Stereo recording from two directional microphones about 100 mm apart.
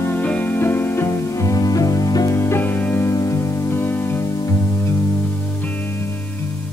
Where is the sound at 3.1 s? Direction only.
35° left (ahead or behind).